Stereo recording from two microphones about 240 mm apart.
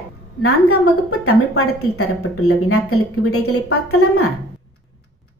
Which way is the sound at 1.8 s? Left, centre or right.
Left.